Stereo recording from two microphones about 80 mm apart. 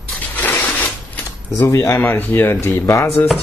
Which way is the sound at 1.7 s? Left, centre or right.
Left.